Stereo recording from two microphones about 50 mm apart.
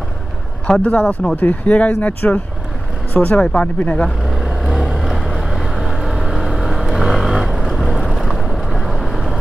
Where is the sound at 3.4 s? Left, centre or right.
Left.